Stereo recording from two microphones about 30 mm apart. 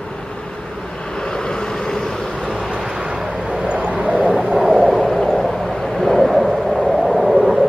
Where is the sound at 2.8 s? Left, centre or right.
Right.